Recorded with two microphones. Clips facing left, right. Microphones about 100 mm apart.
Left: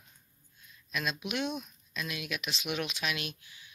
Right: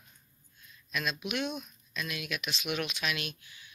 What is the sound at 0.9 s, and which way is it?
Speech, 30° left (ahead or behind).